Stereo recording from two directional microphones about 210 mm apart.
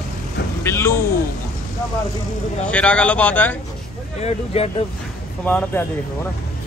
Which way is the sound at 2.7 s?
5° left (ahead or behind).